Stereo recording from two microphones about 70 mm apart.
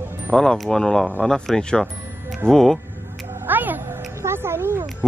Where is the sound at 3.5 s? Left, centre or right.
Right.